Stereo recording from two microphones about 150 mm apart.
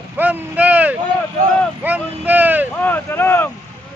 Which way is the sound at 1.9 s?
10° right (ahead or behind).